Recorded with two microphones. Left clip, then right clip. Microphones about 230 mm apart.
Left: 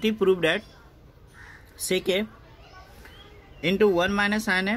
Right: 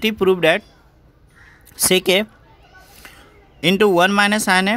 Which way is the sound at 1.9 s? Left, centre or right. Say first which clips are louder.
Right 9 dB; right.